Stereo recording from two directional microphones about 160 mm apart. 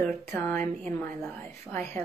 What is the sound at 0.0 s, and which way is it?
Speech, centre (ahead or behind).